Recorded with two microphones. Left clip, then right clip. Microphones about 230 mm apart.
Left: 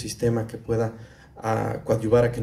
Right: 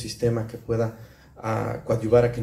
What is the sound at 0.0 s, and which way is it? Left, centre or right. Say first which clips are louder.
Speech: even; left.